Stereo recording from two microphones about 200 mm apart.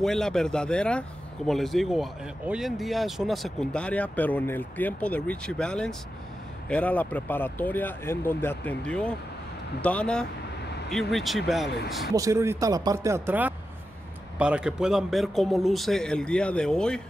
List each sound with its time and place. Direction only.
0.0 s speech: 5° left (ahead or behind)
12.1 s speech: 15° right (ahead or behind); by 17.0 s 5° left (ahead or behind)